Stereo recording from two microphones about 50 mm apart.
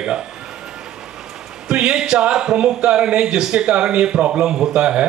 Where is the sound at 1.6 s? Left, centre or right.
Centre.